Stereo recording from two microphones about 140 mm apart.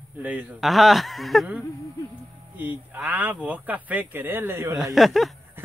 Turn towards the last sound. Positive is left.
turn(degrees=0)  # may be behind; listen again after turning